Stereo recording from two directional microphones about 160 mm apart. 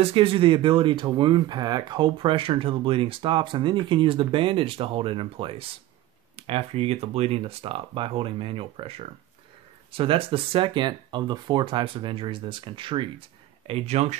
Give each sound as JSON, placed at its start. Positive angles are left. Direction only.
{"t": 0.0, "sound": "speech", "side_deg": -35}